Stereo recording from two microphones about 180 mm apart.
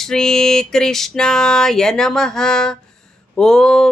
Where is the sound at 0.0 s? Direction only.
5° left (ahead or behind).